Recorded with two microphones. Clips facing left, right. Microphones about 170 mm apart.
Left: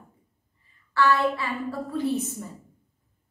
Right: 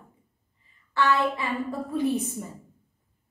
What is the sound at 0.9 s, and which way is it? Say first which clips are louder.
A woman's voice: left 2 dB; 20° right (ahead or behind).